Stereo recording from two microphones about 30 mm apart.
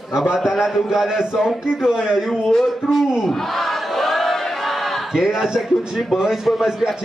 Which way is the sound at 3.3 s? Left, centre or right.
Centre.